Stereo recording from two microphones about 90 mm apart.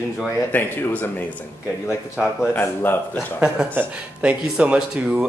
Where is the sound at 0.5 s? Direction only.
20° left (ahead or behind).